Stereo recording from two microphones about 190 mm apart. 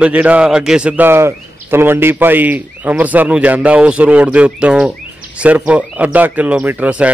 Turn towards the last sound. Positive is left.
turn(degrees=-5)  # may be behind; listen again after turning